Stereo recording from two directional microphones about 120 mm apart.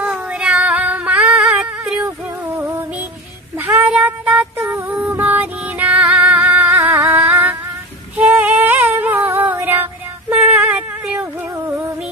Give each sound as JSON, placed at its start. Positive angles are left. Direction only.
{"t": 0.0, "sound": "female singing", "side_deg": -10}
{"t": 3.5, "sound": "child singing", "side_deg": -20}
{"t": 3.9, "sound": "music", "side_deg": -10}
{"t": 6.7, "sound": "a sound", "side_deg": -25}
{"t": 8.2, "sound": "female singing", "side_deg": -15}